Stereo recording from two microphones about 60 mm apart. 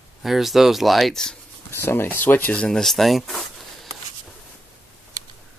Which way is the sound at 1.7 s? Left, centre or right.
Left.